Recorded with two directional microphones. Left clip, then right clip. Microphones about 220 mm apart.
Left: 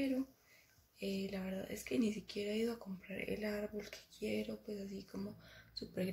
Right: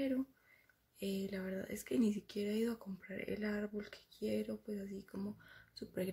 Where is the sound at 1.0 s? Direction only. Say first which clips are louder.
Even; 35° right (ahead or behind).